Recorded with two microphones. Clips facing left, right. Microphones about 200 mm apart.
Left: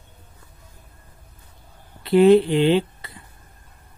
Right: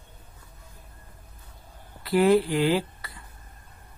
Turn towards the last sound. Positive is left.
turn(degrees=25)  # may be behind; listen again after turning